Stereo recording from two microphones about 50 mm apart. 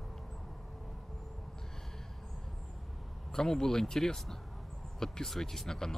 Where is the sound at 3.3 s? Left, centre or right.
Centre.